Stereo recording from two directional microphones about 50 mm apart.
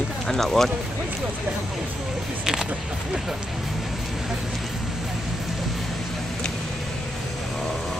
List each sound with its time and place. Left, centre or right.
0.3 s speech: centre